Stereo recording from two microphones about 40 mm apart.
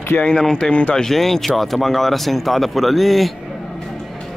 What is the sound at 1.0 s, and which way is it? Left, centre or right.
A man's voice, centre.